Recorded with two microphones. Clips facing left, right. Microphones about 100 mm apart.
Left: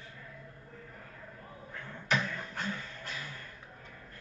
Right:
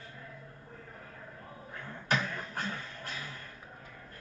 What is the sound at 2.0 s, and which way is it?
Beatboxing, 45° right (ahead or behind).